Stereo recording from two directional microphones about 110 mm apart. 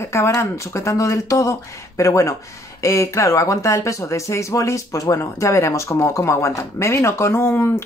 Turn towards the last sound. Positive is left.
turn(degrees=20)  # may be behind; listen again after turning